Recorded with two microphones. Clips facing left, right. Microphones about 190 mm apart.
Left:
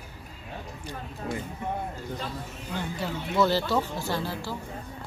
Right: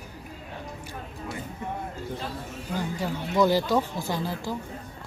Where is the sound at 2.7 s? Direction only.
15° right (ahead or behind).